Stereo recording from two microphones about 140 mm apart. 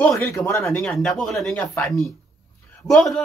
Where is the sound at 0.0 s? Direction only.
10° left (ahead or behind).